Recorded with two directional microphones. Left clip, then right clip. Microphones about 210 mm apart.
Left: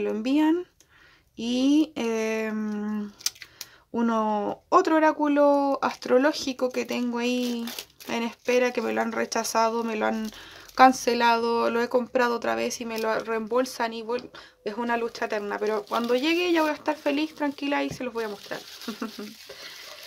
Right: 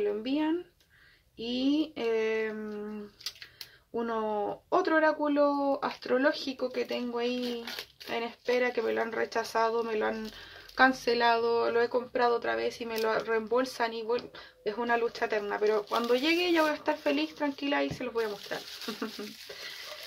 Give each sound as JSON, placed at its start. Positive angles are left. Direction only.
{"t": 0.0, "sound": "speech", "side_deg": 45}
{"t": 18.3, "sound": "speech", "side_deg": 30}